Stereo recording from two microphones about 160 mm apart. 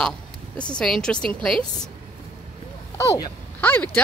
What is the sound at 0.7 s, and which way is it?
Speech, 5° left (ahead or behind).